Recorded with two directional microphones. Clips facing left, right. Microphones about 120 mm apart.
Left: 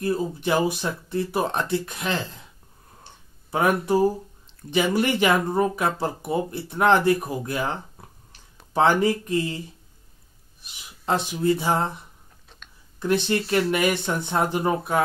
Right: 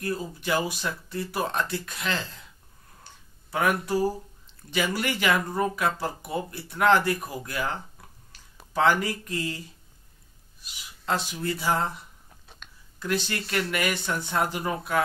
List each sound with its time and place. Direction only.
0.0 s speech: 20° left (ahead or behind)
3.5 s speech: 25° left (ahead or behind)
10.6 s speech: 20° left (ahead or behind)
12.5 s a sound: 5° right (ahead or behind)
13.0 s speech: 20° left (ahead or behind)